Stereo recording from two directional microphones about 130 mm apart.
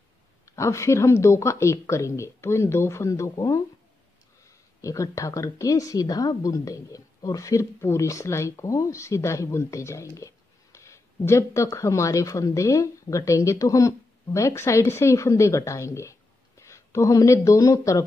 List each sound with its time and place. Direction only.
0.5 s speech: 25° left (ahead or behind)
4.8 s speech: 25° left (ahead or behind)